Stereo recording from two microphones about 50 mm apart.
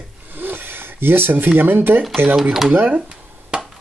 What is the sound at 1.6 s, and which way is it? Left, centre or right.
Speech, right.